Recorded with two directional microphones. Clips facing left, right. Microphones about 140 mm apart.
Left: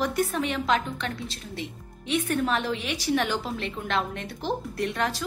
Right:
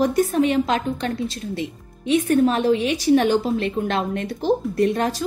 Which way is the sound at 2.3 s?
40° right (ahead or behind).